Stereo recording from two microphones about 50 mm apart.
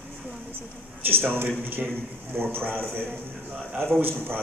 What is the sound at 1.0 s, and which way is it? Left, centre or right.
A man's voice, right.